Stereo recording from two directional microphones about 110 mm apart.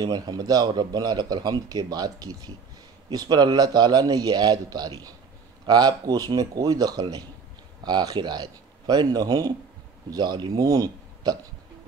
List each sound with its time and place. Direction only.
0.0 s speech: 35° right (ahead or behind)